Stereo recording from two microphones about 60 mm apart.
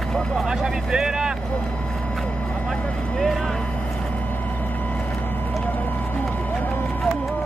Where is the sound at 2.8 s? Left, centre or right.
Centre.